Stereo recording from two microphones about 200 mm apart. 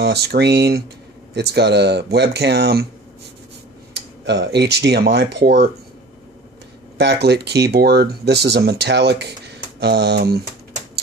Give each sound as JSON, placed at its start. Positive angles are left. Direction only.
{"t": 0.0, "sound": "speech", "side_deg": -55}
{"t": 3.9, "sound": "speech", "side_deg": -60}
{"t": 7.0, "sound": "speech", "side_deg": -55}